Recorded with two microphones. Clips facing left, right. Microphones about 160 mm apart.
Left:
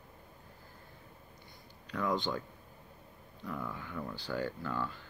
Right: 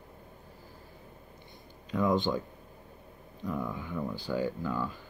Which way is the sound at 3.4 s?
20° right (ahead or behind).